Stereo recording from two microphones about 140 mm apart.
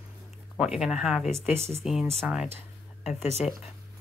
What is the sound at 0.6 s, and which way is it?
Speech, 5° right (ahead or behind).